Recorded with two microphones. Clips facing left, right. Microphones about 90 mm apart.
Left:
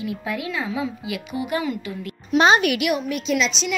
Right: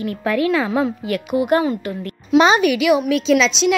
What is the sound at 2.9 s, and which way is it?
Speech, 90° right.